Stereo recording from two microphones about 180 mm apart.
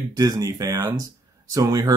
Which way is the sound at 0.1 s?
20° right (ahead or behind).